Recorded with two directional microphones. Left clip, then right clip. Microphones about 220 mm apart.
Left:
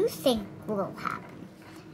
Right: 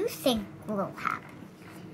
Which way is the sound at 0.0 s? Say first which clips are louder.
Left 2 dB; 5° left (ahead or behind).